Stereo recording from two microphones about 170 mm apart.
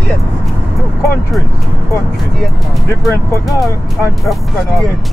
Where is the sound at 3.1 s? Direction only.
20° left (ahead or behind).